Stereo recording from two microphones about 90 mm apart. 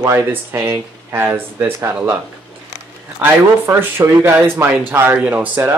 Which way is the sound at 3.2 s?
25° right (ahead or behind).